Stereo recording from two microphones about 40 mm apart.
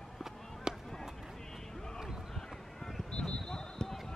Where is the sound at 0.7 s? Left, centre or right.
Centre.